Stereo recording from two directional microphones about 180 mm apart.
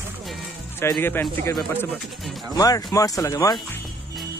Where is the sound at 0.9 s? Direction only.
10° left (ahead or behind).